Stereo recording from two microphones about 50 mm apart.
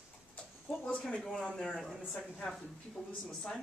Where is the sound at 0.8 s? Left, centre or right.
Centre.